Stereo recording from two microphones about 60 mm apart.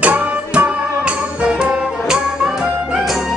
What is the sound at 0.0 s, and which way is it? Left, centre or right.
Music, right.